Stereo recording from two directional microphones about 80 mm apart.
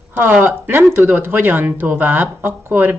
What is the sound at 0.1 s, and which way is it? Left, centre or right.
Speech, right.